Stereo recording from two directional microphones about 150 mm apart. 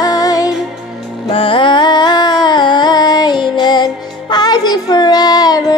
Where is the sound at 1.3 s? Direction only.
35° left (ahead or behind).